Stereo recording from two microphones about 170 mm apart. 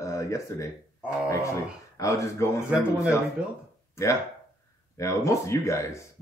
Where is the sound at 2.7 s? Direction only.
5° right (ahead or behind).